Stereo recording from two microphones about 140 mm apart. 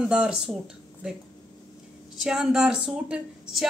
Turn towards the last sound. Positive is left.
turn(degrees=-5)  # may be behind; listen again after turning